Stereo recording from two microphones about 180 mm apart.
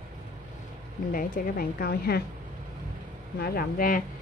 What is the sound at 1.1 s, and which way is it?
A woman's voice, 50° left (ahead or behind).